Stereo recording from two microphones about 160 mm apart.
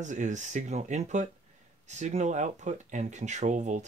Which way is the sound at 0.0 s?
50° right (ahead or behind).